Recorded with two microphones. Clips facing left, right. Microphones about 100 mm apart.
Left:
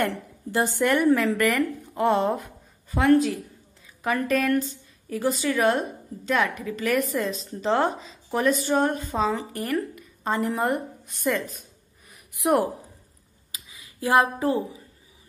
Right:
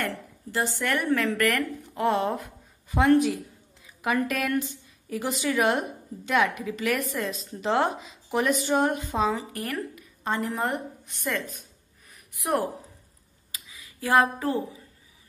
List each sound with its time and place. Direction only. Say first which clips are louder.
0.7 s a woman's voice: left 7 dB; 15° left (ahead or behind)
2.9 s a woman's voice: left 1 dB; 20° right (ahead or behind); by 11.5 s 5° left (ahead or behind)
12.4 s speech: left 5 dB; 15° left (ahead or behind)
13.9 s speech: left 1 dB; 25° left (ahead or behind)